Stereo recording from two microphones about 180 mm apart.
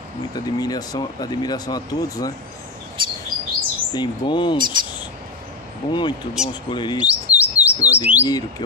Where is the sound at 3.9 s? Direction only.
25° left (ahead or behind).